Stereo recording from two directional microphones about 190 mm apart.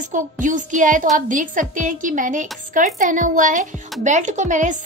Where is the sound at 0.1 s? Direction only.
40° right (ahead or behind).